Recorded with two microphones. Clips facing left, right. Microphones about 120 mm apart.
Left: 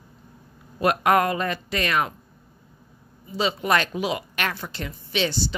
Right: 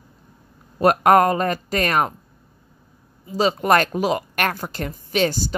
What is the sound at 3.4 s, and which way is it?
Speech, 45° right (ahead or behind).